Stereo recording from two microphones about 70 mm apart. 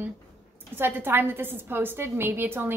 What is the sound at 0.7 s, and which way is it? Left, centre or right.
A woman's voice, right.